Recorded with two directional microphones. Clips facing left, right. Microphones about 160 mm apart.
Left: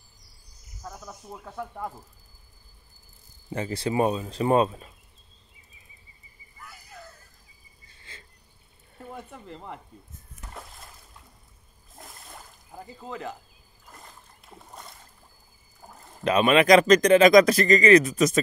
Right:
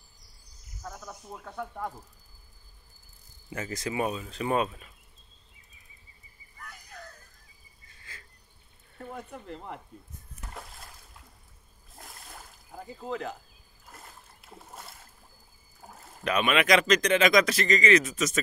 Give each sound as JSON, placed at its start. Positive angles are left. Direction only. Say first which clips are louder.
{"t": 1.0, "sound": "speech", "louder": "left 1 dB", "side_deg": 5}
{"t": 3.4, "sound": "speech", "louder": "left 5 dB", "side_deg": 30}
{"t": 6.6, "sound": "a sound", "louder": "left 1 dB", "side_deg": 5}
{"t": 7.8, "sound": "cricket", "louder": "left 1 dB", "side_deg": 30}
{"t": 9.1, "sound": "speech", "louder": "even", "side_deg": 0}
{"t": 10.5, "sound": "a sound", "louder": "left 1 dB", "side_deg": 0}
{"t": 11.9, "sound": "splash", "louder": "left 2 dB", "side_deg": 0}
{"t": 16.3, "sound": "speech", "louder": "left 6 dB", "side_deg": 35}